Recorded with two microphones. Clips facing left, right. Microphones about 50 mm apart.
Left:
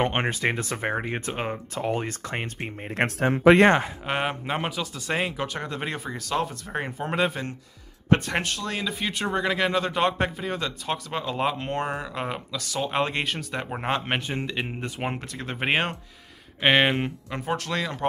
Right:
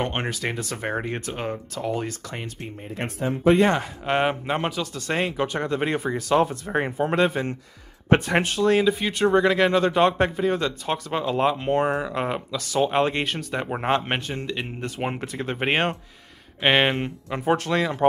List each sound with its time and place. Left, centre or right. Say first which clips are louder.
0.0 s speech: left 2 dB; left
0.8 s speech: right 1 dB; centre
2.0 s speech: left 2 dB; left
3.2 s speech: left 2 dB; left
4.0 s speech: right 5 dB; centre
8.1 s speech: right 3 dB; centre
14.2 s speech: even; centre
15.1 s speech: right 4 dB; centre
17.5 s speech: right 6 dB; centre